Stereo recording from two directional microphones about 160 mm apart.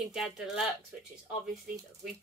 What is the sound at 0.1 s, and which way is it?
Speech, centre (ahead or behind).